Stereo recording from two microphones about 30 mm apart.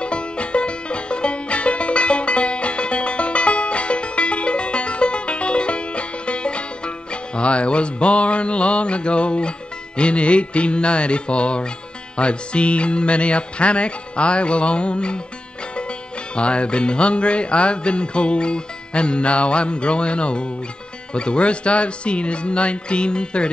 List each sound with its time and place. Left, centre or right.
0.0 s music: left
16.3 s music: left